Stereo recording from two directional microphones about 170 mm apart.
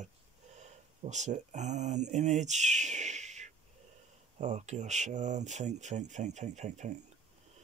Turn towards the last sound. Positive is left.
turn(degrees=-45)  # may be behind; listen again after turning